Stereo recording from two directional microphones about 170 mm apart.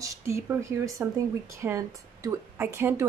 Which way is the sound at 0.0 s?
15° right (ahead or behind).